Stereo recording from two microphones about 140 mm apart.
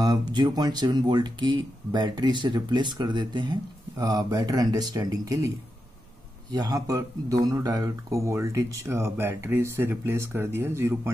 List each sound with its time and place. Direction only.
0.0 s speech: 30° right (ahead or behind)
6.5 s speech: 25° right (ahead or behind)